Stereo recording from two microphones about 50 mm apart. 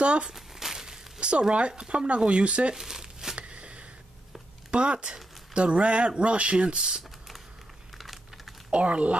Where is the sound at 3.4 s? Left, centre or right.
Right.